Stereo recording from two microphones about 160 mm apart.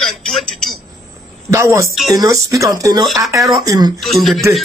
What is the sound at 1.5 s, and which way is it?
Speech, 20° right (ahead or behind).